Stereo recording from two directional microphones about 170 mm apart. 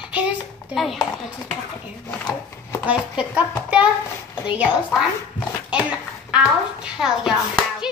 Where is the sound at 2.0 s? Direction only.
10° left (ahead or behind).